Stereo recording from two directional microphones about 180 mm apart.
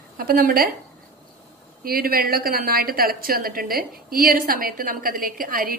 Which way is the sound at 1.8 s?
55° right (ahead or behind).